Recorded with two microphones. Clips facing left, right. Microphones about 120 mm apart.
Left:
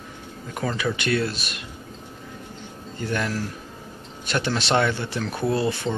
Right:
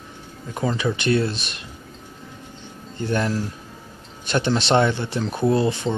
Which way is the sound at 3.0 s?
25° right (ahead or behind).